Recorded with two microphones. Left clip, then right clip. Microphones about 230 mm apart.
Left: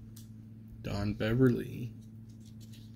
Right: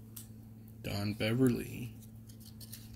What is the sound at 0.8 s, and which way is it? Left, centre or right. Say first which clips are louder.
Speech: left 1 dB; centre.